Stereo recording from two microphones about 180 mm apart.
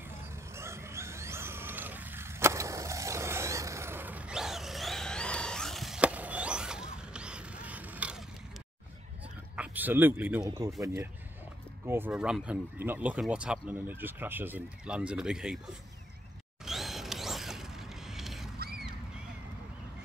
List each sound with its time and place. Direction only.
0.2 s a sound: 15° right (ahead or behind)
9.6 s speech: 10° right (ahead or behind)
16.6 s mechanisms: centre (ahead or behind)